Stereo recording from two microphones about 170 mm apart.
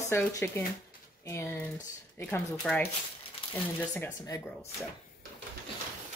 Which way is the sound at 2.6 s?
5° left (ahead or behind).